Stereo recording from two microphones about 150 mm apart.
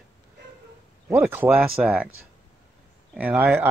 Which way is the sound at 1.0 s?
10° right (ahead or behind).